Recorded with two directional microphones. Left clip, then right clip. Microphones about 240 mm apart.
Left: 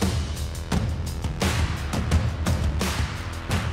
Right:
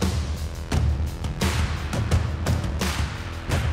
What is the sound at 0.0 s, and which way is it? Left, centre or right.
Music, centre.